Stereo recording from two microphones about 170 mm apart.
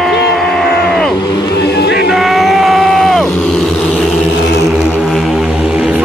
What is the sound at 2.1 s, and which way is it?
Vehicle, centre (ahead or behind).